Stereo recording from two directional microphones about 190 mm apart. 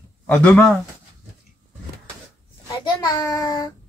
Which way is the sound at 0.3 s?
5° left (ahead or behind).